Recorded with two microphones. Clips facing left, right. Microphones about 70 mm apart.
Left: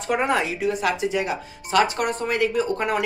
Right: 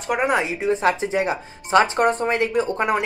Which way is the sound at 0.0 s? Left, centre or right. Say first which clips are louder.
Right 1 dB; centre.